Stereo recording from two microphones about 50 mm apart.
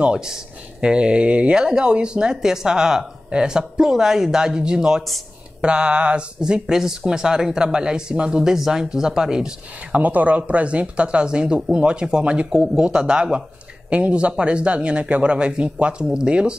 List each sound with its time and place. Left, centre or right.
0.0 s speech: centre
9.9 s speech: right
12.4 s speech: centre